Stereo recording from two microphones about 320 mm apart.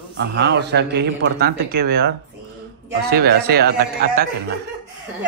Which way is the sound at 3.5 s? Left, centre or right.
Right.